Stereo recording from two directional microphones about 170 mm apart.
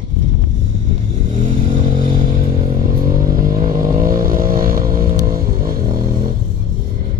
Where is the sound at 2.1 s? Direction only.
55° right (ahead or behind).